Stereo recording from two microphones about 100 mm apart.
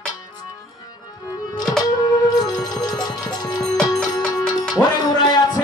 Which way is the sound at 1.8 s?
40° left (ahead or behind).